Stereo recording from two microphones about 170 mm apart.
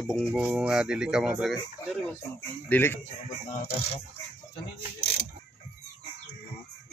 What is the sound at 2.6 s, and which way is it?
Speech, 10° left (ahead or behind).